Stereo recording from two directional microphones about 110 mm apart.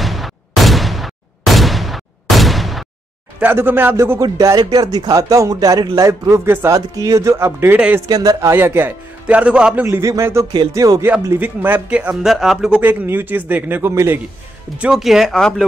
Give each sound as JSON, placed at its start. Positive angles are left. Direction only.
{"t": 0.0, "sound": "a sound", "side_deg": 0}
{"t": 3.3, "sound": "speech", "side_deg": -20}
{"t": 8.1, "sound": "a man's voice", "side_deg": -35}
{"t": 9.8, "sound": "speech", "side_deg": -25}
{"t": 11.3, "sound": "a man's voice", "side_deg": -15}
{"t": 12.8, "sound": "a man's voice", "side_deg": -20}
{"t": 14.8, "sound": "speech", "side_deg": -5}